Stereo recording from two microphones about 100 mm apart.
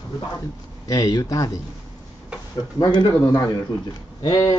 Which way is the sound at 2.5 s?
45° left (ahead or behind).